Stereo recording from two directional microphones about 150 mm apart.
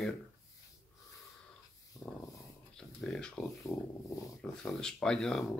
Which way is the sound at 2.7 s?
5° left (ahead or behind).